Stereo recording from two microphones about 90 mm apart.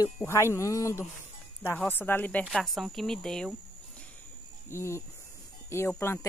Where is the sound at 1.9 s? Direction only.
25° left (ahead or behind).